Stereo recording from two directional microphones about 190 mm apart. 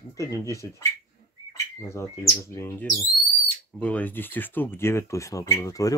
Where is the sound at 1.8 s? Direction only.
15° left (ahead or behind).